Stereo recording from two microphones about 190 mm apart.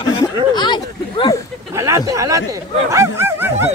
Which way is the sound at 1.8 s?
15° right (ahead or behind).